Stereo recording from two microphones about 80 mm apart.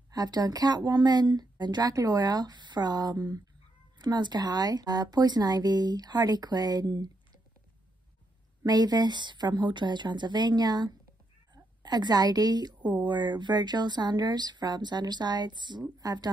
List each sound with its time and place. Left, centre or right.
0.1 s a woman's voice: right
8.6 s a woman's voice: right
15.8 s speech: right